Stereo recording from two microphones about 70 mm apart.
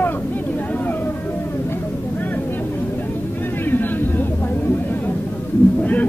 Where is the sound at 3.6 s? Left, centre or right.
Left.